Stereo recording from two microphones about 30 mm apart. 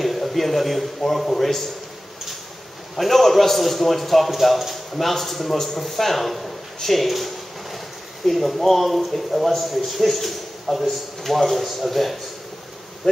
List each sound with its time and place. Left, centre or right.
0.0 s a man's voice: centre
3.0 s a man's voice: centre
13.0 s bee: centre